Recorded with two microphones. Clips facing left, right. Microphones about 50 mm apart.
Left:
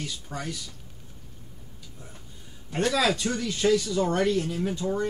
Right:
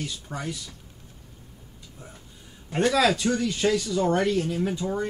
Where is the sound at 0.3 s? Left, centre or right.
Right.